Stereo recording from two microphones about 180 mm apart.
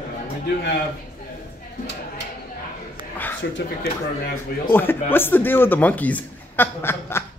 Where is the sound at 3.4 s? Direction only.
70° left (ahead or behind).